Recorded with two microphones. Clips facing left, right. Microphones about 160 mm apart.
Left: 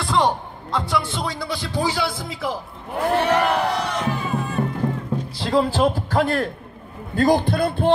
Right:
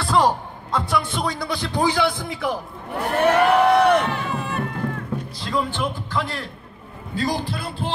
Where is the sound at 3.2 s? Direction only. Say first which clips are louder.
Right 6 dB; 60° right (ahead or behind).